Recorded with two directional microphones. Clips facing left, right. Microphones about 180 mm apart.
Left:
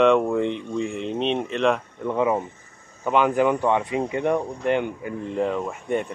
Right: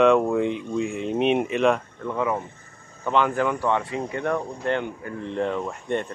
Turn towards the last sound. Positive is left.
turn(degrees=5)  # may be behind; listen again after turning